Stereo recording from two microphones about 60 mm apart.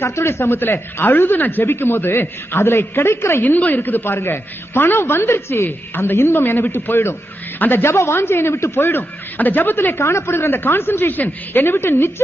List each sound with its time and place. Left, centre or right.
0.0 s speech: left
3.4 s speech: left
9.9 s speech: left
11.7 s a woman's voice: left